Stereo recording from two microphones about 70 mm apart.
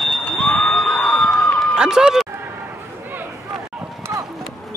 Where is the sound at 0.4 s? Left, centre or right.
Centre.